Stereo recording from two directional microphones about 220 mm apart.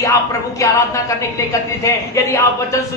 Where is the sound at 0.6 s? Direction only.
15° left (ahead or behind).